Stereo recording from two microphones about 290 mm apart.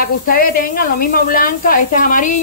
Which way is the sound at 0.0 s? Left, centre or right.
Left.